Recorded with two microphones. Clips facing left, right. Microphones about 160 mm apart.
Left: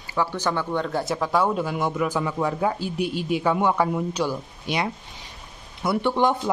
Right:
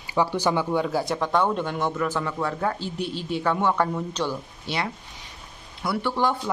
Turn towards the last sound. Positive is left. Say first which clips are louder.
# left 3 dB
turn(degrees=20)  # may be behind; listen again after turning